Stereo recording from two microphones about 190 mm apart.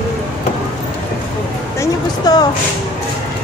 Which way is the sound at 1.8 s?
20° left (ahead or behind).